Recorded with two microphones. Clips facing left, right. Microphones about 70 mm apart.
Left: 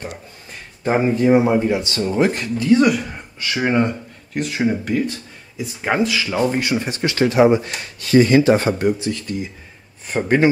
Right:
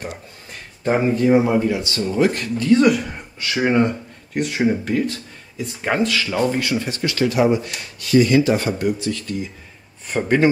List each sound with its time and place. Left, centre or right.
0.8 s speech: left
2.4 s speech: centre
6.5 s speech: left
10.0 s a man's voice: centre